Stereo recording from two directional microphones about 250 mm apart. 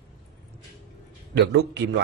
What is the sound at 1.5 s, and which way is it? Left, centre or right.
Speech, right.